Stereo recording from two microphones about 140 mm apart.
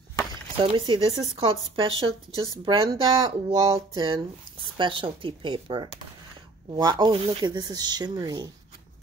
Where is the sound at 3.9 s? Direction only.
35° right (ahead or behind).